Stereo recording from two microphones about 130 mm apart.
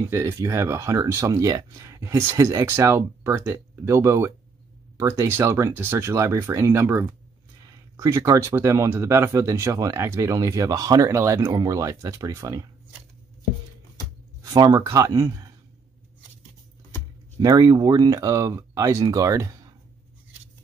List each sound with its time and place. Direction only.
0.1 s speech: 25° right (ahead or behind)
14.4 s speech: 25° right (ahead or behind)
17.4 s speech: 30° right (ahead or behind)